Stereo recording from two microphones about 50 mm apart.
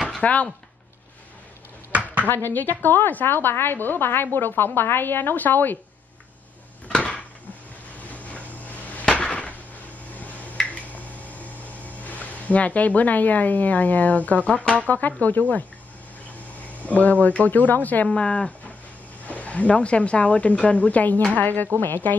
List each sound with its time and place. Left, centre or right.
0.2 s speech: left
2.2 s a woman's voice: left
7.0 s a sound: left
10.1 s finger snapping: left
10.7 s a sound: left
14.6 s speech: left
16.7 s speech: left
18.0 s speech: left